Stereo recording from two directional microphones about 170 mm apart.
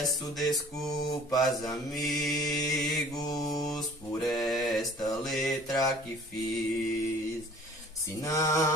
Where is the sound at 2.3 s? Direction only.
20° left (ahead or behind).